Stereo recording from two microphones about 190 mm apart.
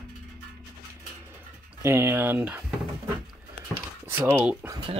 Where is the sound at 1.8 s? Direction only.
15° right (ahead or behind).